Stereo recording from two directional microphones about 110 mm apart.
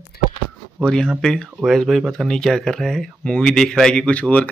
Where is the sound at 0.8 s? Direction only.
5° left (ahead or behind).